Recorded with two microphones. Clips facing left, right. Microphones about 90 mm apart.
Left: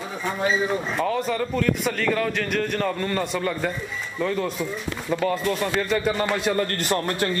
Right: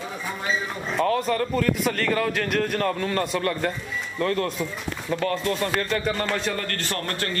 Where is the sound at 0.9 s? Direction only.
Centre (ahead or behind); by 7.2 s 15° left (ahead or behind).